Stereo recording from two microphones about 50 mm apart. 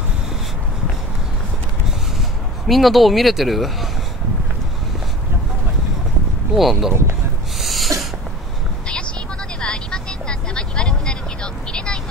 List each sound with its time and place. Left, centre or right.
2.6 s speech: centre
6.5 s speech: centre
7.6 s sneeze: centre
9.6 s vehicle: centre